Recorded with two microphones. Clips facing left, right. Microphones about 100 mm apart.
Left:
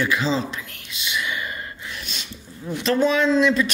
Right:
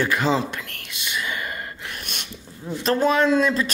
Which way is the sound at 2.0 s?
55° right (ahead or behind).